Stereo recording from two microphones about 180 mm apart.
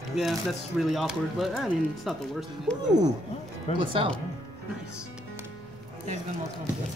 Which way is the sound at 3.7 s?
35° left (ahead or behind).